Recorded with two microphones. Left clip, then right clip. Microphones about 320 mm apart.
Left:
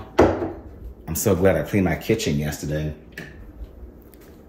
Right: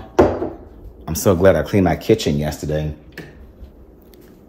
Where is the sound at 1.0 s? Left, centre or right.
Centre.